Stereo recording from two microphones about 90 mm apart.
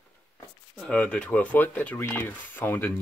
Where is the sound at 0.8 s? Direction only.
15° left (ahead or behind).